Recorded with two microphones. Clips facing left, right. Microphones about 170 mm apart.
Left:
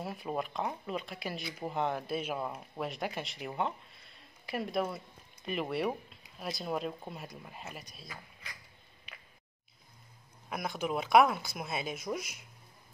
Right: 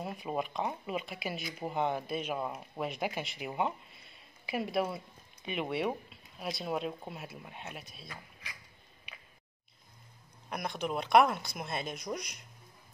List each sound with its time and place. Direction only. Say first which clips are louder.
0.0 s speech: right 1 dB; centre (ahead or behind)
10.5 s speech: left 1 dB; centre (ahead or behind)